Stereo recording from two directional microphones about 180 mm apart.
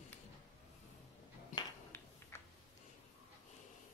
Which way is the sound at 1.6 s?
15° left (ahead or behind).